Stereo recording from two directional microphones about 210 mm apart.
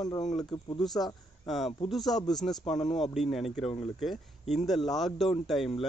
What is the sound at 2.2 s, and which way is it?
Speech, 20° left (ahead or behind).